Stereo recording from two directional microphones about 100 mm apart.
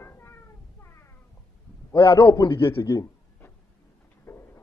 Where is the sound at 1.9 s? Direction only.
50° left (ahead or behind).